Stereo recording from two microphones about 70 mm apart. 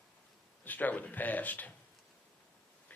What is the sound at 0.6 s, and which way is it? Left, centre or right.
Speech, left.